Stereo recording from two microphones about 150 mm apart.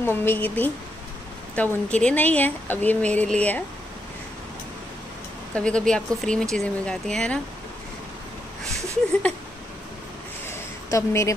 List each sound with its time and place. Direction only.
0.0 s speech: 15° left (ahead or behind)
5.5 s speech: 5° left (ahead or behind)
10.5 s a sound: 20° left (ahead or behind)